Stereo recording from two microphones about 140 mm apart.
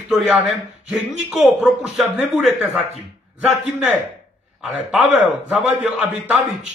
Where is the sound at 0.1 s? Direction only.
5° right (ahead or behind).